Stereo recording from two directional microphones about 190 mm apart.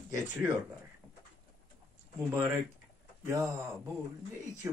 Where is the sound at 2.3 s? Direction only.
15° right (ahead or behind).